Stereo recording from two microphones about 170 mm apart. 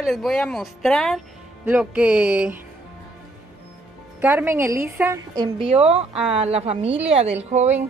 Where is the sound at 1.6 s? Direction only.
10° right (ahead or behind).